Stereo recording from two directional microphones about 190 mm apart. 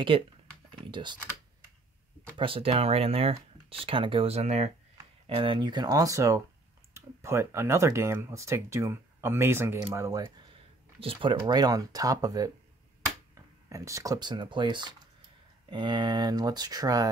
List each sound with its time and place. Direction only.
0.1 s speech: 25° right (ahead or behind)
2.3 s speech: 30° right (ahead or behind)
11.0 s speech: 30° right (ahead or behind)